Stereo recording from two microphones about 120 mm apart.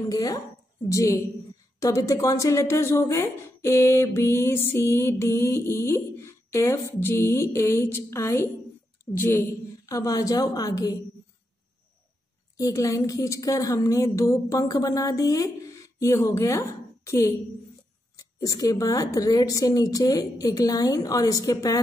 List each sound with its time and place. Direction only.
0.1 s a woman's voice: 30° left (ahead or behind)
12.5 s a woman's voice: 25° left (ahead or behind)